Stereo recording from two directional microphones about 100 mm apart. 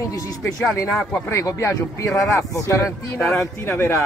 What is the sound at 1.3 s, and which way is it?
Speech, 30° left (ahead or behind).